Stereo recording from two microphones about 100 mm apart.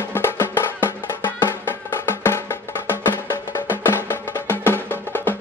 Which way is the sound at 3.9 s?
20° left (ahead or behind).